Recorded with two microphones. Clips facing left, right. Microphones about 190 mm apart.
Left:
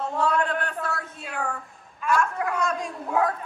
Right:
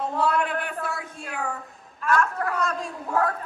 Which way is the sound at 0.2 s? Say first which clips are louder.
Left 1 dB; 10° right (ahead or behind).